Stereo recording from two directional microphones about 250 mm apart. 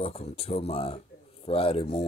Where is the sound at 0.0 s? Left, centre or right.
Left.